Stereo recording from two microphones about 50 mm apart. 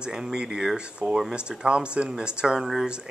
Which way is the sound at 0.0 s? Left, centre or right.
Centre.